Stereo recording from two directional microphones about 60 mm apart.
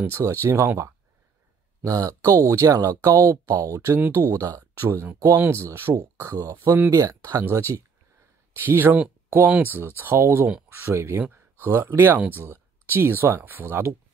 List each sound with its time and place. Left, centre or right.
0.1 s speech: right
1.9 s speech: right
3.9 s speech: right
4.6 s speech: right
6.2 s speech: right
6.5 s speech: right
7.0 s speech: right
7.2 s speech: right
8.5 s speech: right
9.8 s speech: right
11.9 s speech: right